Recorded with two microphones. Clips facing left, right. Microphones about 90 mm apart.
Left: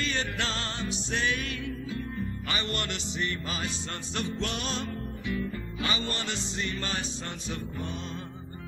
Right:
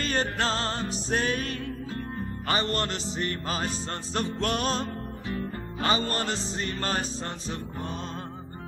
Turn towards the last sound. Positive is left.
turn(degrees=-40)  # may be behind; listen again after turning